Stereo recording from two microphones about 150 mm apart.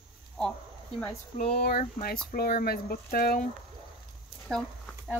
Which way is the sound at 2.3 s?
90° left.